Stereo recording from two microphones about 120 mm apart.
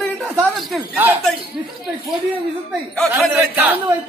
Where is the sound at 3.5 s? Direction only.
15° right (ahead or behind).